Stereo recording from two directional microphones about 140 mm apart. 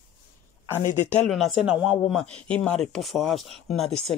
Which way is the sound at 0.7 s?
15° left (ahead or behind).